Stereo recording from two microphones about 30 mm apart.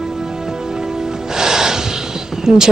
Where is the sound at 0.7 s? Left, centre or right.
Centre.